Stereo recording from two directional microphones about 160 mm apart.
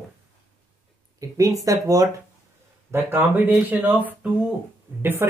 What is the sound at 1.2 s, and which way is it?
Speech, 20° right (ahead or behind).